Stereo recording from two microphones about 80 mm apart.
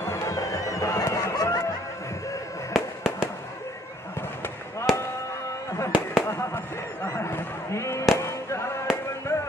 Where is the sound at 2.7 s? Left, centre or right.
Centre.